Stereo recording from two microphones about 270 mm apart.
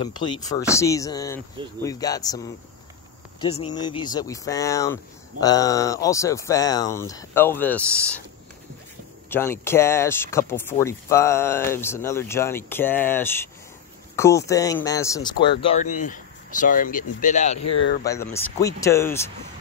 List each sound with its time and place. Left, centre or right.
0.0 s speech: centre
9.3 s speech: centre
15.6 s speech: left
18.0 s speech: centre